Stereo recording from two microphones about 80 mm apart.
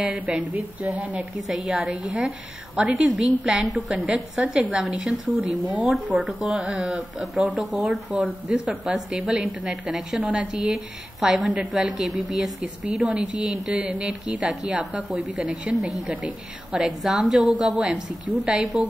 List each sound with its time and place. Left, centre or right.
0.0 s a woman's voice: centre
1.6 s a woman's voice: centre
3.6 s a woman's voice: centre
8.2 s a woman's voice: centre
13.0 s a woman's voice: centre
14.7 s a woman's voice: centre
15.7 s a woman's voice: centre
17.4 s a woman's voice: centre